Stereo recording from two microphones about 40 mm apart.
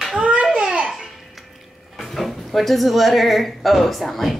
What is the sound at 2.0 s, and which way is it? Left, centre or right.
Speech, centre.